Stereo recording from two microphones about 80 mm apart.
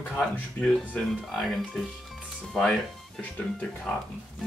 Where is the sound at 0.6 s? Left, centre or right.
Centre.